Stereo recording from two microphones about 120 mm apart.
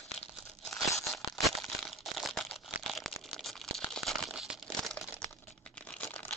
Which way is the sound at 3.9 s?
5° left (ahead or behind).